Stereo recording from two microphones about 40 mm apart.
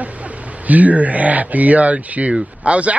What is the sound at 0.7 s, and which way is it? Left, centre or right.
Speech, right.